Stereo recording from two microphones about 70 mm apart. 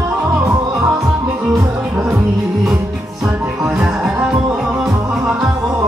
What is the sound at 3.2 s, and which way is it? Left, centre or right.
Music, centre.